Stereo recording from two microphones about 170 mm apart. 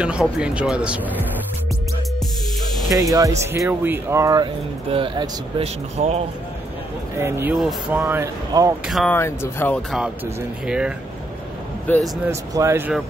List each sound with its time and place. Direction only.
0.0 s speech: 5° right (ahead or behind)
2.9 s speech: 20° right (ahead or behind)
4.9 s speech: 30° right (ahead or behind)
7.2 s speech: 15° right (ahead or behind)
7.5 s speech: centre (ahead or behind)
8.0 s speech: 15° right (ahead or behind)
8.8 s speech: centre (ahead or behind)
9.1 s speech: 15° left (ahead or behind)
9.8 s speech: 5° right (ahead or behind)
11.9 s speech: 10° left (ahead or behind)
12.3 s speech: 15° right (ahead or behind)